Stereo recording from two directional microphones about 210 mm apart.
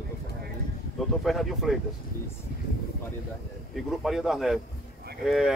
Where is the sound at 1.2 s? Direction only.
Centre (ahead or behind).